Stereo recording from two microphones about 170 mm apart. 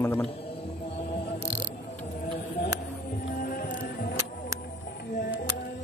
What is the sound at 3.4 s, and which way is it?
Music, 60° left (ahead or behind).